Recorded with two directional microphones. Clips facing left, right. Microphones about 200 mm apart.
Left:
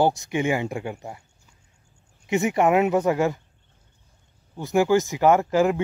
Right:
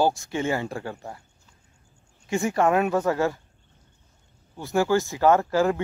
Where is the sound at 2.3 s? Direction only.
20° left (ahead or behind).